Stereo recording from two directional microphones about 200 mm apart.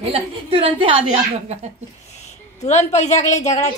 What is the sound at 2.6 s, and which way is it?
Speech, 35° left (ahead or behind).